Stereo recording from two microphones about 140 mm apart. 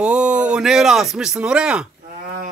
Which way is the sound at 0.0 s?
5° right (ahead or behind).